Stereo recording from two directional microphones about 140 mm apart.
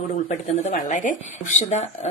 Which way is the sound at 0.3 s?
60° left (ahead or behind).